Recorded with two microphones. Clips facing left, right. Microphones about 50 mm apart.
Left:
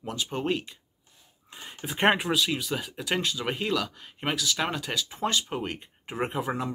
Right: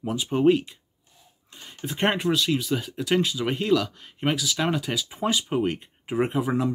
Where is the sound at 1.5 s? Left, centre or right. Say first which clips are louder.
Left 2 dB; centre.